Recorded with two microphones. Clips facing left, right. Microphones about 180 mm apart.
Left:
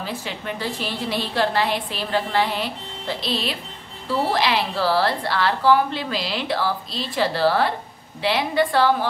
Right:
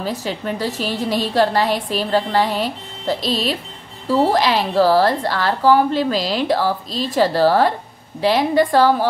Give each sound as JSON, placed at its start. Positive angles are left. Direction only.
{"t": 0.0, "sound": "speech", "side_deg": -40}